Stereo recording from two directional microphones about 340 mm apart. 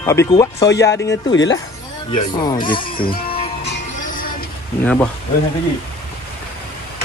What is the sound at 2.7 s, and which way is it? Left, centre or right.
Speech, left.